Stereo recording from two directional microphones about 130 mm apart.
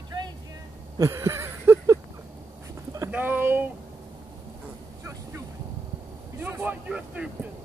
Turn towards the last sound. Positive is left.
turn(degrees=-10)  # may be behind; listen again after turning